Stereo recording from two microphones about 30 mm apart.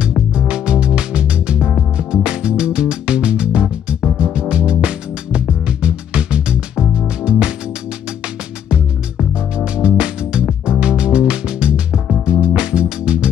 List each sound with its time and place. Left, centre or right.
0.3 s music: right
9.8 s music: right